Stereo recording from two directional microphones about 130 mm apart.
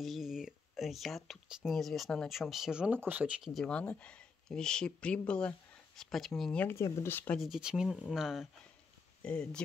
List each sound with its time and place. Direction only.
0.0 s speech: centre (ahead or behind)
3.5 s speech: 5° left (ahead or behind)
6.6 s speech: 20° left (ahead or behind)
7.3 s speech: centre (ahead or behind)
9.2 s speech: 10° left (ahead or behind)